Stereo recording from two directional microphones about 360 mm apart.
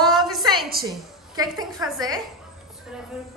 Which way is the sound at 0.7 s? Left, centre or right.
Right.